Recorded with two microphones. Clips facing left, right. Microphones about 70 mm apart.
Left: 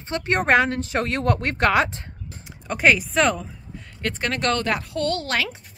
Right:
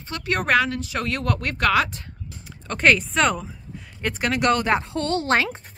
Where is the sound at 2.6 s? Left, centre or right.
Centre.